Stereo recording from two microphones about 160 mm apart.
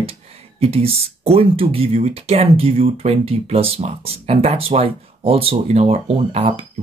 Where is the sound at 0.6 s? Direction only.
35° right (ahead or behind).